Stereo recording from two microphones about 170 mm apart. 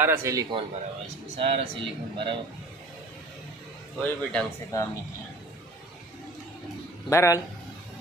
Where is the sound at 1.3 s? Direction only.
35° right (ahead or behind).